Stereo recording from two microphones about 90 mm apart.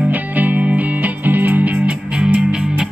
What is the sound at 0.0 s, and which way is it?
Music, 20° right (ahead or behind).